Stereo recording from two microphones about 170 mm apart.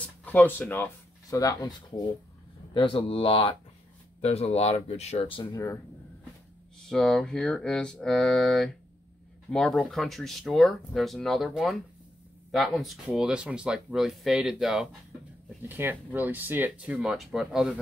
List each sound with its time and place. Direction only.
0.0 s speech: 10° left (ahead or behind)
2.7 s speech: 30° left (ahead or behind)
6.8 s speech: 5° left (ahead or behind)